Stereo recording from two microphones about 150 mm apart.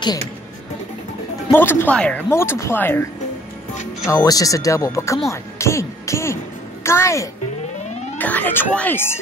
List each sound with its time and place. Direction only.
1.5 s speech: 15° left (ahead or behind)